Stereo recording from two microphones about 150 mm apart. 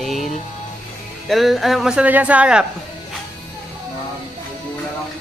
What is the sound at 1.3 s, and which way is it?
Speech, centre (ahead or behind).